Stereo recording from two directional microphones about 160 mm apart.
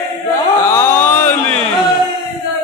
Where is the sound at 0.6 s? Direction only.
15° left (ahead or behind).